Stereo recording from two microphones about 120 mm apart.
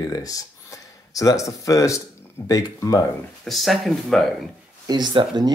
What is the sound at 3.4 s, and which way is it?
Speech, centre (ahead or behind).